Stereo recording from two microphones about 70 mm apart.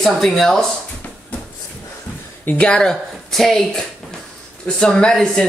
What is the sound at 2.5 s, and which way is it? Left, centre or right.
Speech, centre.